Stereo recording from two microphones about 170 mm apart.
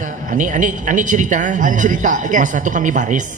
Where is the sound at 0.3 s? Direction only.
50° right (ahead or behind).